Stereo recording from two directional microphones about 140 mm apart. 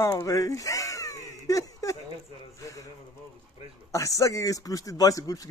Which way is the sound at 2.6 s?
25° left (ahead or behind).